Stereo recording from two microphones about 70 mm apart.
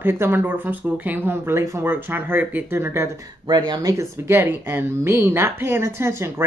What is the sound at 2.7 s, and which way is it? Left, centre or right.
Speech, right.